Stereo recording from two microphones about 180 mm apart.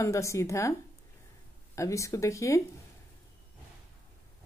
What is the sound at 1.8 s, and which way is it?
Speech, 15° left (ahead or behind).